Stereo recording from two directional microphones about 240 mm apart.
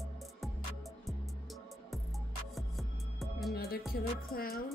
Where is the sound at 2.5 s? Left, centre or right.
Centre.